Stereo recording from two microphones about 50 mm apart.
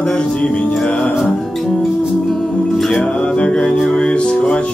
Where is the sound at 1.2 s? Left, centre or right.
Centre.